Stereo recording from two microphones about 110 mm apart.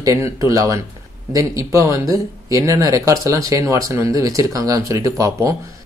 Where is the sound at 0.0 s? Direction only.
30° right (ahead or behind).